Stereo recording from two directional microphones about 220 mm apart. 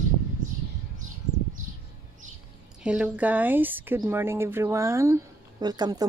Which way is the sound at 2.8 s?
5° right (ahead or behind).